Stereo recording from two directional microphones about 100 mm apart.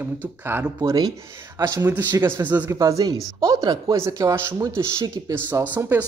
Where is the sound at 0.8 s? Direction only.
40° right (ahead or behind).